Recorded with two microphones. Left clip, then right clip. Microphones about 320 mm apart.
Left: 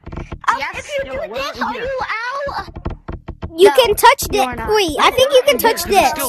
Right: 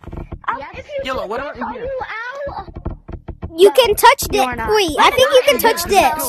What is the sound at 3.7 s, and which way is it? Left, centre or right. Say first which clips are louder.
Speech: even; centre.